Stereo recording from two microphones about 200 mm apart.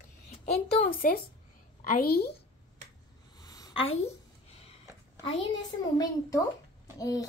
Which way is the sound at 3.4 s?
20° left (ahead or behind).